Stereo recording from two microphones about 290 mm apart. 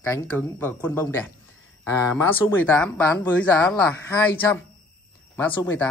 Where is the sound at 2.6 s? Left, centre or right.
Centre.